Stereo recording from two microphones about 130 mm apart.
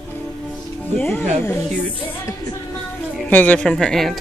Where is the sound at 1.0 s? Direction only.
15° left (ahead or behind).